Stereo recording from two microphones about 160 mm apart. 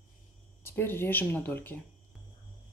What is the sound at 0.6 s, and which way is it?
Speech, 15° left (ahead or behind).